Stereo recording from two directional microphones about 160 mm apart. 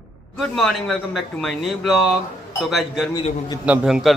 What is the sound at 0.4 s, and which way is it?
Speech, centre (ahead or behind).